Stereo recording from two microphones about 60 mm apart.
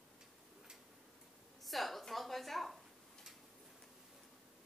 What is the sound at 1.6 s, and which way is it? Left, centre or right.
A woman's voice, centre.